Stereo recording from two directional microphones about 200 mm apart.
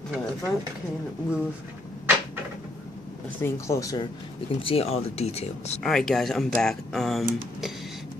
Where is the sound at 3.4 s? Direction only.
15° left (ahead or behind).